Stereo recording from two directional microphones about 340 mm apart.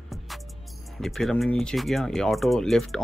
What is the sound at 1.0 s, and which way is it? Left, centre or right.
Speech, centre.